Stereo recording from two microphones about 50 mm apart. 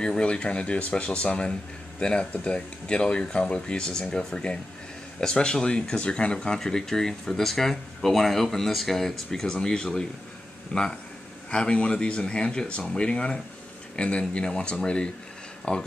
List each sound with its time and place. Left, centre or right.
0.0 s speech: centre